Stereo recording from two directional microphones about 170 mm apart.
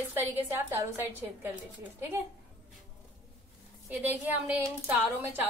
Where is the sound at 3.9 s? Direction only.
10° right (ahead or behind).